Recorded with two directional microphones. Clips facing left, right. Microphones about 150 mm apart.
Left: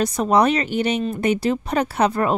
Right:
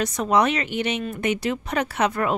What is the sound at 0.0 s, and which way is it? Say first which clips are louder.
Speech: left 3 dB; 35° left (ahead or behind).